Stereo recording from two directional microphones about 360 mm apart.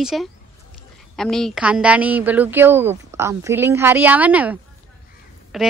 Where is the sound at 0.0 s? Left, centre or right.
Centre.